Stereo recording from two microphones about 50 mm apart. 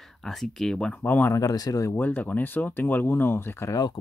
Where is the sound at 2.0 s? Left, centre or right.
Left.